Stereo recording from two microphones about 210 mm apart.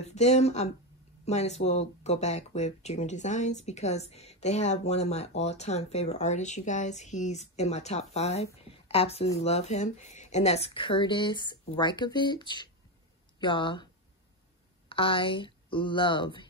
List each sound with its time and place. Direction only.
0.0 s speech: 30° left (ahead or behind)
8.6 s a sound: 30° left (ahead or behind)
9.4 s a woman's voice: 30° left (ahead or behind)
14.9 s speech: 25° left (ahead or behind)